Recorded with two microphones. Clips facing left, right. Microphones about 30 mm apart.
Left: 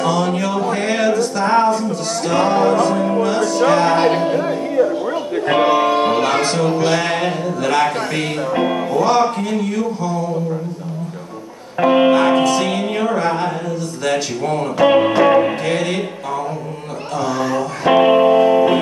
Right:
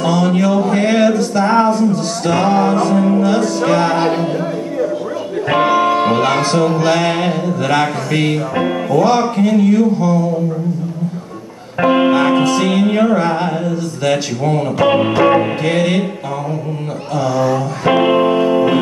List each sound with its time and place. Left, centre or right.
0.0 s music: centre
3.3 s speech: centre
3.9 s a capella: left
5.5 s music: centre
6.7 s speech: centre
11.8 s speech: centre
17.8 s music: centre